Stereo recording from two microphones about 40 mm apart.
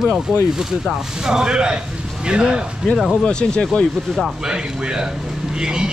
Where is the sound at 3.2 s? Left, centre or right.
Left.